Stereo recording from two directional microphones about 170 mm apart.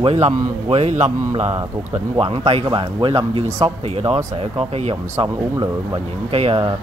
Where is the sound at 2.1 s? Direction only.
35° right (ahead or behind).